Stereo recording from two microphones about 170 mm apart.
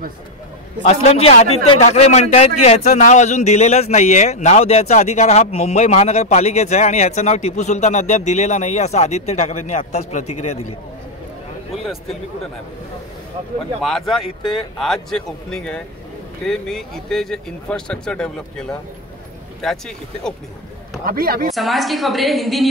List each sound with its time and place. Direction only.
0.8 s a man's voice: 35° left (ahead or behind)
11.7 s a sound: centre (ahead or behind)
13.8 s speech: centre (ahead or behind)
21.0 s speech: 60° right (ahead or behind)
21.5 s speech: centre (ahead or behind)